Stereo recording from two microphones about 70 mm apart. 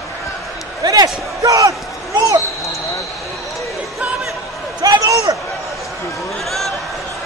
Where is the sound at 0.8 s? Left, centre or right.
Right.